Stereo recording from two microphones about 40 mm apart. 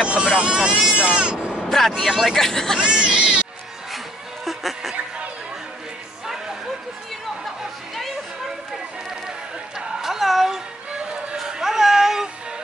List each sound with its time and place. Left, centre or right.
0.0 s speech: right
1.6 s vehicle: centre
1.9 s speech: centre
2.3 s speech: centre
2.8 s speech: right
4.5 s snicker: centre
9.8 s a sound: centre
11.3 s music: centre